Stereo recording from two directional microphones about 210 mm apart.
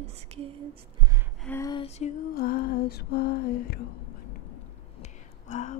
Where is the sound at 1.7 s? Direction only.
25° left (ahead or behind).